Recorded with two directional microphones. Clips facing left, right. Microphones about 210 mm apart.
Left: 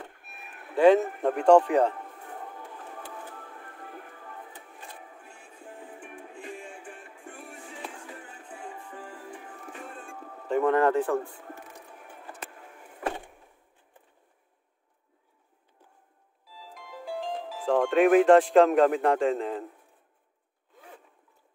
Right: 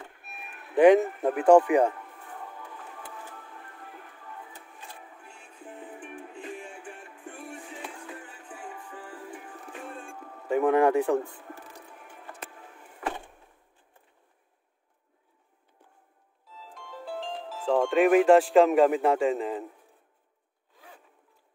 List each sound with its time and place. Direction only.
0.7 s speech: 15° right (ahead or behind)
1.2 s speech: 5° right (ahead or behind)
10.5 s a sound: 10° right (ahead or behind)
16.4 s music: 10° left (ahead or behind)
17.6 s speech: centre (ahead or behind)